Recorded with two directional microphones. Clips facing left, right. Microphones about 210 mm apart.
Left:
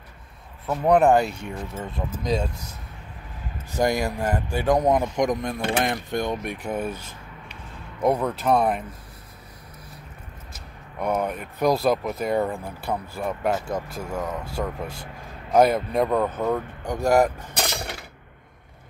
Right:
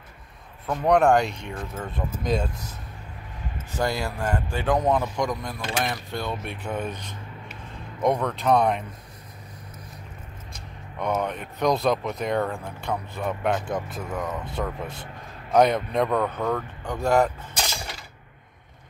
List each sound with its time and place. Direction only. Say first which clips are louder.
0.7 s speech: left 1 dB; 5° left (ahead or behind)
3.7 s speech: left 4 dB; 15° left (ahead or behind)
5.6 s speech: left 4 dB; 55° left (ahead or behind)
6.0 s speech: left 4 dB; 15° left (ahead or behind)
10.5 s a sound: even; 10° left (ahead or behind)
11.3 s speech: left 2 dB; centre (ahead or behind)
12.4 s speech: left 2 dB; 15° left (ahead or behind)
13.7 s speech: even; 25° left (ahead or behind)
14.5 s speech: left 1 dB; centre (ahead or behind)
17.6 s a sound: left 3 dB; 60° left (ahead or behind)